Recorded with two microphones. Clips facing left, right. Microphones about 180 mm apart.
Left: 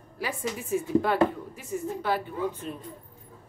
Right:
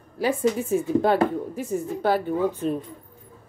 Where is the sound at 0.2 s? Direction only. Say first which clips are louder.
Right 10 dB; 30° right (ahead or behind).